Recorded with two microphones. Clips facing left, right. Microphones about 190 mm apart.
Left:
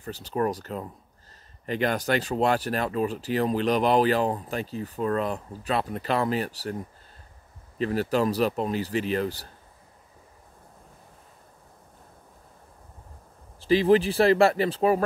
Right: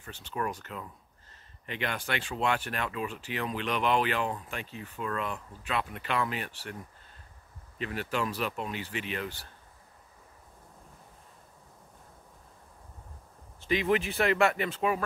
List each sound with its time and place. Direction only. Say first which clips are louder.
0.0 s speech: left 8 dB; 35° left (ahead or behind)
7.8 s speech: left 8 dB; 35° left (ahead or behind)
13.6 s speech: left 8 dB; 35° left (ahead or behind)